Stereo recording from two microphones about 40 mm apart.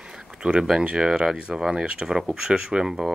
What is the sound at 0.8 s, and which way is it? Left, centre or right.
Speech, centre.